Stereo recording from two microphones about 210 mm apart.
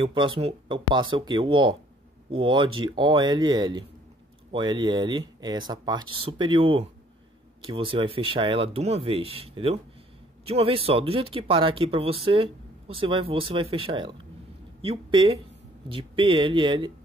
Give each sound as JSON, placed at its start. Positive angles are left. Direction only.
{"t": 0.0, "sound": "speech", "side_deg": -25}